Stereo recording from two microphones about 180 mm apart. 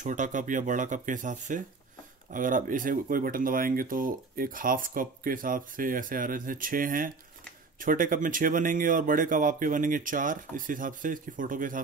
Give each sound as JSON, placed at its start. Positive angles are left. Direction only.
{"t": 0.0, "sound": "speech", "side_deg": -45}